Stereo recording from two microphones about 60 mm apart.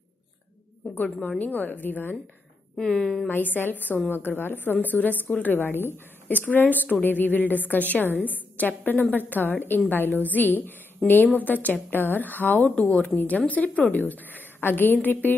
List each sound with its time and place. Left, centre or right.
0.8 s a woman's voice: centre
1.4 s a woman's voice: left
2.8 s a woman's voice: centre
3.3 s a woman's voice: left
11.0 s a woman's voice: centre
11.3 s a woman's voice: left